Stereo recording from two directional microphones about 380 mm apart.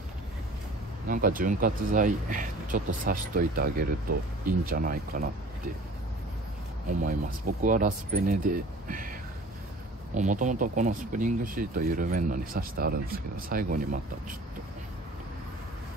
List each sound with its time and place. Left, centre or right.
1.0 s speech: right
7.0 s speech: right
10.1 s speech: centre